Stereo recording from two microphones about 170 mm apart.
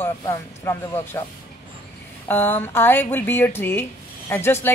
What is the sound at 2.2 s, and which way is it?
Speech, 10° left (ahead or behind).